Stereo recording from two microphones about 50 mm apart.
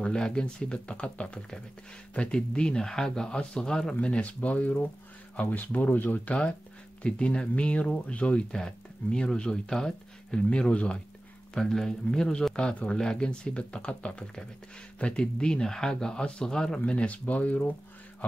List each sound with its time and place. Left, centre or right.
0.1 s speech: centre
4.0 s speech: left
7.0 s speech: left
10.7 s speech: left
11.5 s speech: centre
16.8 s speech: left